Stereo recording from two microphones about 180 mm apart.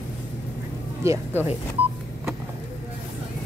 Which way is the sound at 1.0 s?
15° right (ahead or behind).